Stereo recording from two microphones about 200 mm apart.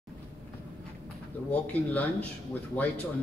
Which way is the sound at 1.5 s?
5° left (ahead or behind).